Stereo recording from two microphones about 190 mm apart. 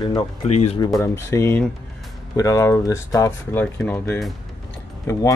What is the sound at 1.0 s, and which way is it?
Speech, 15° left (ahead or behind).